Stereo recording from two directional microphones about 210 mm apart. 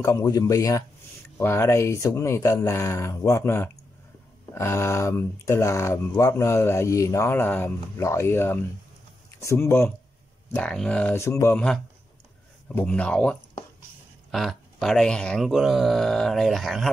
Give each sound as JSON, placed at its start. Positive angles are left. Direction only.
{"t": 0.0, "sound": "speech", "side_deg": 15}